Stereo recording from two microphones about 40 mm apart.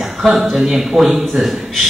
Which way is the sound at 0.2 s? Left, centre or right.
Centre.